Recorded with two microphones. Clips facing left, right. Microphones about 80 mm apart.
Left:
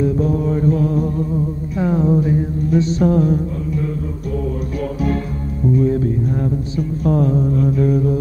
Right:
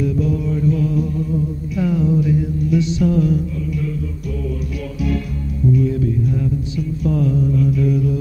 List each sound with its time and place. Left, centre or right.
0.0 s music: left
5.7 s music: left
7.1 s mantra: left